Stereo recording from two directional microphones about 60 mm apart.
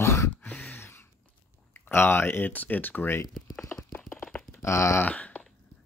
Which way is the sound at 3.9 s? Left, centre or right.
Left.